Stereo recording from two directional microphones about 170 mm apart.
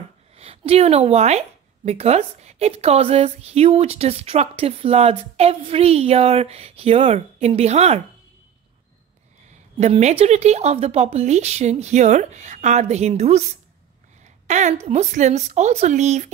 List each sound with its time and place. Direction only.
0.4 s a woman's voice: 35° right (ahead or behind)
9.8 s a woman's voice: 40° right (ahead or behind)